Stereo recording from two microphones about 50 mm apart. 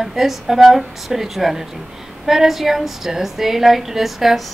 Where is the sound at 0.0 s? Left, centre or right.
Centre.